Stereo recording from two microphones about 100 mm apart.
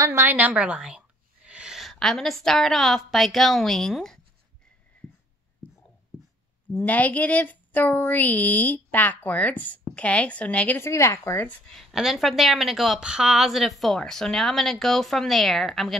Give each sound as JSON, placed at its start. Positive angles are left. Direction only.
{"t": 0.0, "sound": "a woman's voice", "side_deg": -25}
{"t": 6.7, "sound": "speech", "side_deg": 20}
{"t": 10.8, "sound": "speech", "side_deg": 30}
{"t": 11.4, "sound": "speech", "side_deg": 5}